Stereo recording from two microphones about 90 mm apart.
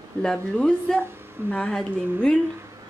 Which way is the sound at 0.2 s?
10° left (ahead or behind).